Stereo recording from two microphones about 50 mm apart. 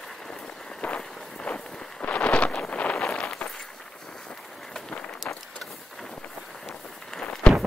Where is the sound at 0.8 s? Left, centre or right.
Left.